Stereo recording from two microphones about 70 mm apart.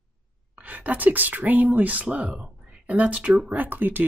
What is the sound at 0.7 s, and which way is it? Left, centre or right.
Speech, right.